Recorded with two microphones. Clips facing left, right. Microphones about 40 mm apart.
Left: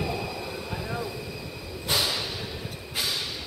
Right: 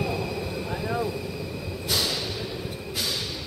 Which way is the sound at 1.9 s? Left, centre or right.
Centre.